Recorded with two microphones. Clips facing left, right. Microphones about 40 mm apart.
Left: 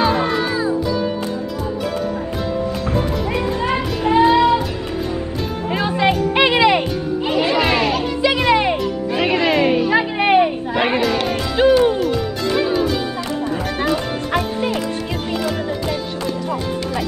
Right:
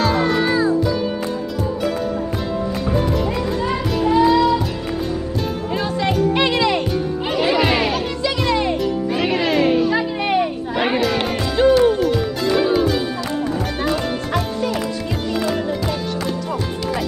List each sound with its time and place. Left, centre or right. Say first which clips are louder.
0.0 s music: even; centre
0.4 s music: right 3 dB; centre
3.6 s music: right 1 dB; left
5.9 s music: left 2 dB; left
7.2 s music: left 1 dB; centre
8.2 s music: left 5 dB; left
9.1 s music: left 3 dB; centre
9.9 s a sound: left 4 dB; left
10.7 s music: left 1 dB; centre
11.5 s music: even; centre
12.0 s music: right 1 dB; centre